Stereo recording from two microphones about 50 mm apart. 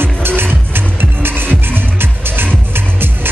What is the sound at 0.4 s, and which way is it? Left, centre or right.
Music, right.